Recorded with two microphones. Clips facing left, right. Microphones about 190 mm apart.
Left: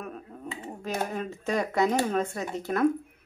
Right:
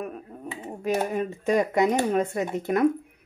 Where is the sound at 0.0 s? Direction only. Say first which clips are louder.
Right 4 dB; 15° right (ahead or behind).